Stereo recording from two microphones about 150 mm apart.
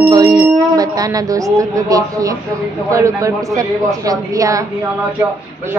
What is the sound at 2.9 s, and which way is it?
A man's voice, 20° right (ahead or behind).